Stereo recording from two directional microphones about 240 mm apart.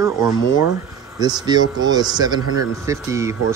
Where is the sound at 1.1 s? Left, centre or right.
Centre.